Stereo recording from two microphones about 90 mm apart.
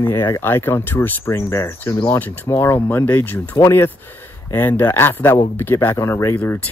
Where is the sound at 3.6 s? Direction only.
30° left (ahead or behind).